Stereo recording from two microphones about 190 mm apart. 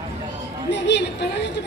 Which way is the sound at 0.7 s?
65° left (ahead or behind).